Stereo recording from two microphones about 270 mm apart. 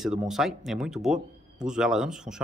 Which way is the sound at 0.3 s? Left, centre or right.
Centre.